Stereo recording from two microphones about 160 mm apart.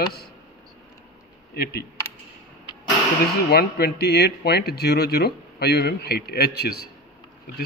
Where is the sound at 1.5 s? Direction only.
75° left (ahead or behind).